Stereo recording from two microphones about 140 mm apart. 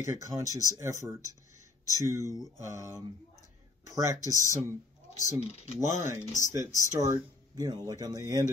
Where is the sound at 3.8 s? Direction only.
25° right (ahead or behind).